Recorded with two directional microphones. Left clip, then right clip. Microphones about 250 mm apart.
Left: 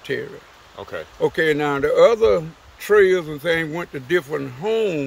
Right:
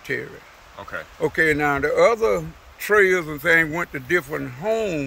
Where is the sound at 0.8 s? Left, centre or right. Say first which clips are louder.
Left 1 dB; left.